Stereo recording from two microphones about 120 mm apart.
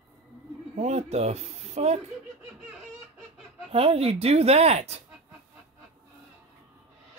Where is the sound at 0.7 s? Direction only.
65° right (ahead or behind).